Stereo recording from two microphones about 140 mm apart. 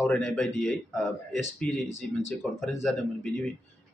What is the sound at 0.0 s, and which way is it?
A man's voice, 5° left (ahead or behind).